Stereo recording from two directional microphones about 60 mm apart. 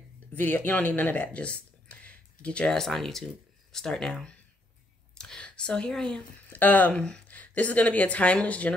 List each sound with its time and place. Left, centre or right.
0.3 s speech: left
2.7 s speech: centre
5.1 s a sound: centre
6.5 s speech: left
6.9 s speech: centre
7.2 s speech: left